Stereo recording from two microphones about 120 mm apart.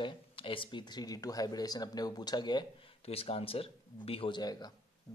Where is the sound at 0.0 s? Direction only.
45° left (ahead or behind).